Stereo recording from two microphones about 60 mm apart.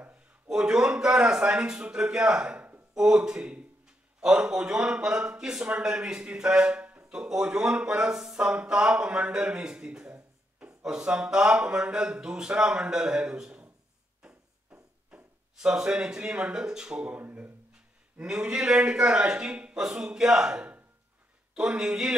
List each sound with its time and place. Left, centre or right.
0.5 s a man's voice: centre
15.1 s a sound: centre
15.5 s speech: centre
17.2 s speech: right
18.2 s speech: centre